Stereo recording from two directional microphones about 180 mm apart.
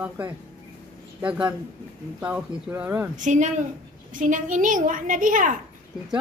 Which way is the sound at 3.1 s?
45° right (ahead or behind).